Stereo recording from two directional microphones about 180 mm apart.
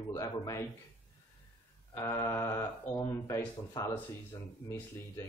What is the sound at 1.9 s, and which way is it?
Speech, 20° left (ahead or behind).